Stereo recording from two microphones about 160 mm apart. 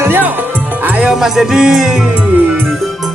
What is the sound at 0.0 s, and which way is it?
Music, 15° right (ahead or behind).